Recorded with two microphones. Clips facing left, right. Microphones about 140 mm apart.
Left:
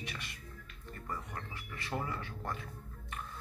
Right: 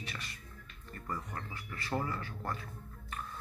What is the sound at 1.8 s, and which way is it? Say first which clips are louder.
Speech: right 2 dB; 20° left (ahead or behind).